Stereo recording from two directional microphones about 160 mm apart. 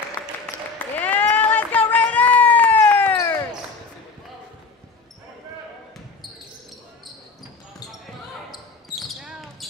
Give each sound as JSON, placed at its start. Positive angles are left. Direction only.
{"t": 0.9, "sound": "run", "side_deg": 10}
{"t": 3.2, "sound": "basketball bounce", "side_deg": 15}
{"t": 8.9, "sound": "basketball bounce", "side_deg": 0}